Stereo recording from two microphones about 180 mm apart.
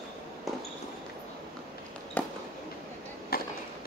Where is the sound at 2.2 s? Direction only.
10° left (ahead or behind).